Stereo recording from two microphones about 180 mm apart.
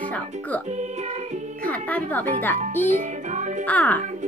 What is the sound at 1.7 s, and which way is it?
Speech, 10° left (ahead or behind).